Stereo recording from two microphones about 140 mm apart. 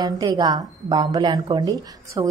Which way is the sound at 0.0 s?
30° right (ahead or behind).